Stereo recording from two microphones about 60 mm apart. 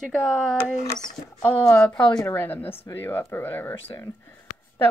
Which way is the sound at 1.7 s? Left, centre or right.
Centre.